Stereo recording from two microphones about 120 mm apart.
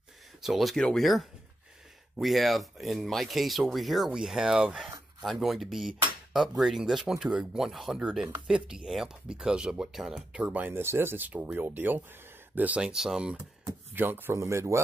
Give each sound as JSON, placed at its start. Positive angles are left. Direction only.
{"t": 0.4, "sound": "speech", "side_deg": 0}